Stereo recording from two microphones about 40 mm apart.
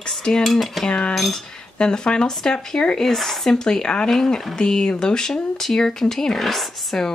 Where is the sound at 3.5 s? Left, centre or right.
Centre.